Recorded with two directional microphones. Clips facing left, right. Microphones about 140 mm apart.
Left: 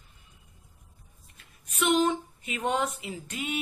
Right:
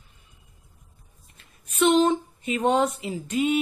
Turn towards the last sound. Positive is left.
turn(degrees=-25)  # may be behind; listen again after turning